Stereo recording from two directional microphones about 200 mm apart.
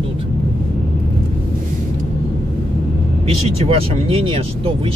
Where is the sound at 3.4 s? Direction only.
30° right (ahead or behind).